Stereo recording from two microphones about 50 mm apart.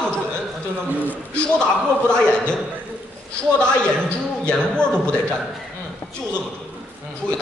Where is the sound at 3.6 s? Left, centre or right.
Centre.